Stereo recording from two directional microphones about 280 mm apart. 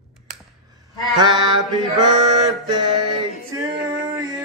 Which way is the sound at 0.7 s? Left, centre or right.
Centre.